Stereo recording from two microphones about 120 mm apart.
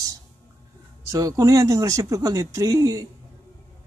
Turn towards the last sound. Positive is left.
turn(degrees=-30)  # may be behind; listen again after turning